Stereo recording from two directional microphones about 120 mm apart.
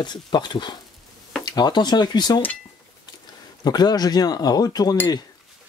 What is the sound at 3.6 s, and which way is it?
Speech, 35° left (ahead or behind).